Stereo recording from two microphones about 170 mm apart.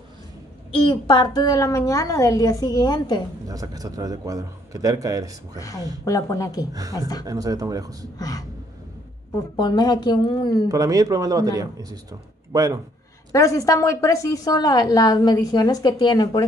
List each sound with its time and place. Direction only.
0.7 s a woman's voice: 30° left (ahead or behind)
3.4 s a man's voice: 20° right (ahead or behind)
6.0 s a woman's voice: 20° left (ahead or behind)
6.7 s a man's voice: 20° right (ahead or behind)
8.2 s speech: 20° left (ahead or behind)
9.6 s a woman's voice: 25° left (ahead or behind)
10.7 s a man's voice: 20° right (ahead or behind)
13.3 s a woman's voice: 20° left (ahead or behind)